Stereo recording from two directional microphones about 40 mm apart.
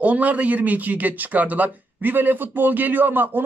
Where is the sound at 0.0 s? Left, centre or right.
Right.